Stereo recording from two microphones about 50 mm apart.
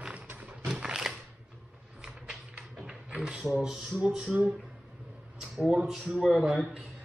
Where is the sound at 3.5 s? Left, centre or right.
Centre.